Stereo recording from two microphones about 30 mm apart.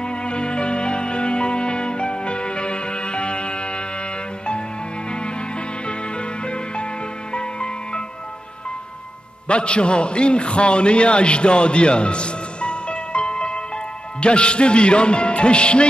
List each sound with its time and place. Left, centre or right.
0.0 s music: left
5.9 s music: left
9.5 s a man's voice: left
14.2 s music: left